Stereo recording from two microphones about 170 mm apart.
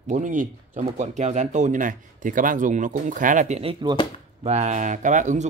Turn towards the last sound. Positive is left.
turn(degrees=-45)  # may be behind; listen again after turning